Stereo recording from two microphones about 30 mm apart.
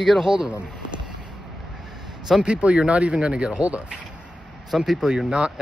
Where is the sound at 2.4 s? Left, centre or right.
Right.